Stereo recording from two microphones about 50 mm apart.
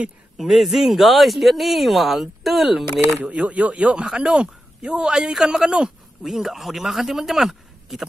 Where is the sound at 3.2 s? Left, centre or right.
Right; by 8.1 s centre.